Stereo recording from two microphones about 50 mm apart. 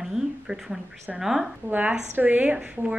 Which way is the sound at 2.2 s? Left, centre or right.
Right.